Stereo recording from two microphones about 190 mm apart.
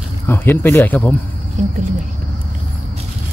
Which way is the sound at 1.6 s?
40° right (ahead or behind).